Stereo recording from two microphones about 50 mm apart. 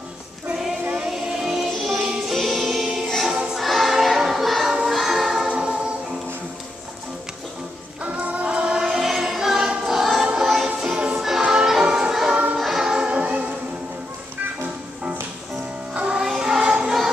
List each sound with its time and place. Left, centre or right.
1.0 s music: centre
2.3 s music: centre
5.5 s music: centre
8.0 s music: right
8.5 s choir: centre
10.2 s music: centre
15.9 s music: right
16.2 s music: centre